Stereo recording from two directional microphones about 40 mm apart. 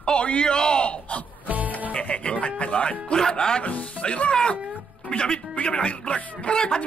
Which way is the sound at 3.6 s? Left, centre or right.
Left.